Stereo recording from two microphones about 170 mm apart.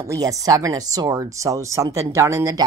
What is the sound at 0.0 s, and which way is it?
Speech, 20° right (ahead or behind).